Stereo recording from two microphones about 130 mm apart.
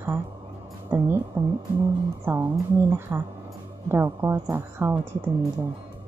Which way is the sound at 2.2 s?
20° right (ahead or behind).